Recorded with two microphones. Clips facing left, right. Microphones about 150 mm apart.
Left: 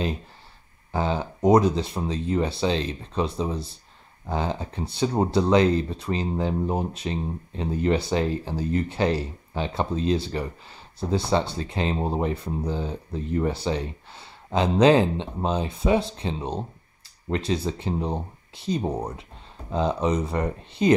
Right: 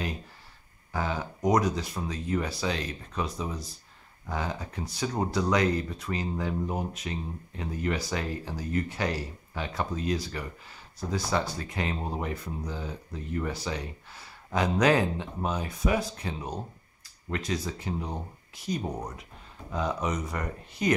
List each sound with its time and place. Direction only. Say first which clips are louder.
0.9 s speech: left 5 dB; 25° left (ahead or behind)